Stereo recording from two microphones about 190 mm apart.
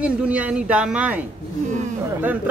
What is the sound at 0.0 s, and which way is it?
Speech, 5° right (ahead or behind).